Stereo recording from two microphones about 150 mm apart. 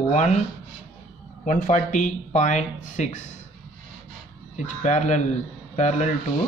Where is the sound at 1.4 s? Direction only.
60° left (ahead or behind).